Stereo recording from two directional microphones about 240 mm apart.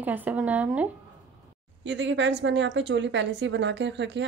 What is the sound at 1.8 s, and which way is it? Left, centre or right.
A woman's voice, right.